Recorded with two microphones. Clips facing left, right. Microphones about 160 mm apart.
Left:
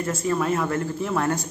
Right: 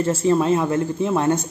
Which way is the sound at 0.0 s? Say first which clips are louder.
Right 6 dB; 30° right (ahead or behind).